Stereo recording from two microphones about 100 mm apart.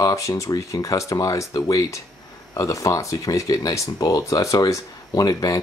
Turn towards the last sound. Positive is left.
turn(degrees=35)  # may be behind; listen again after turning